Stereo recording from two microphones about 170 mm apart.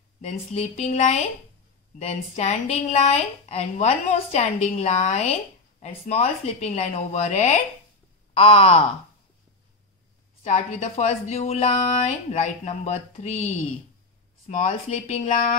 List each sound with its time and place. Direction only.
0.2 s a woman's voice: 40° left (ahead or behind)
10.4 s a woman's voice: 40° left (ahead or behind)